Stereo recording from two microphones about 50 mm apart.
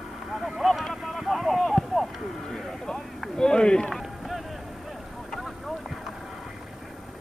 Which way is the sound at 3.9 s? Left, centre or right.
Centre.